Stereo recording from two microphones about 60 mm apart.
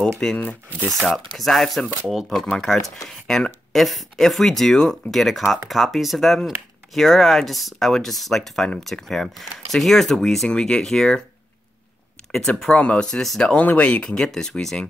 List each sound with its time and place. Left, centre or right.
0.2 s speech: centre
1.0 s speech: centre
12.3 s speech: centre
13.6 s speech: left